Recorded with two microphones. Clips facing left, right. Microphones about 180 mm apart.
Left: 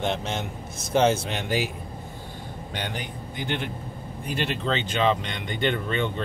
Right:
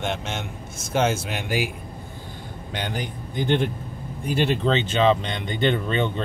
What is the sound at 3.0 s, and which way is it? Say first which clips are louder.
Speech: right 5 dB; 40° right (ahead or behind).